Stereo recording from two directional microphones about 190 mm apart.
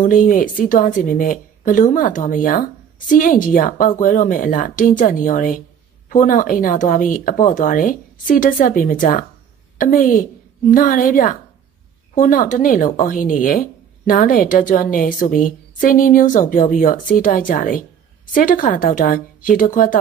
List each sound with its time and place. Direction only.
0.0 s speech: 45° left (ahead or behind)